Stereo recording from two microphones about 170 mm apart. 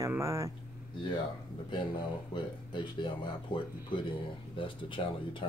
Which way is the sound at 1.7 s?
30° left (ahead or behind).